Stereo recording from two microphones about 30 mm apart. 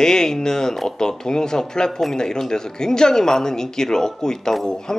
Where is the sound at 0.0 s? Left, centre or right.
Left.